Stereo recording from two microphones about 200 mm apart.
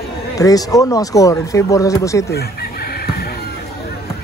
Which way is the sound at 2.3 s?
50° left (ahead or behind).